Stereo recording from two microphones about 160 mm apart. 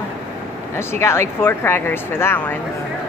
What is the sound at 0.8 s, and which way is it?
Speech, 15° left (ahead or behind).